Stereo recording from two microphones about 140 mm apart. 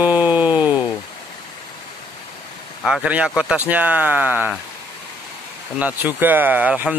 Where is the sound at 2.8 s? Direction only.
5° right (ahead or behind).